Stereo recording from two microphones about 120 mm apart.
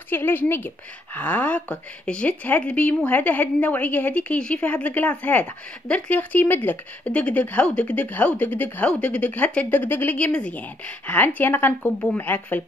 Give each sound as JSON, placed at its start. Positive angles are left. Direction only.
{"t": 0.1, "sound": "a woman's voice", "side_deg": 15}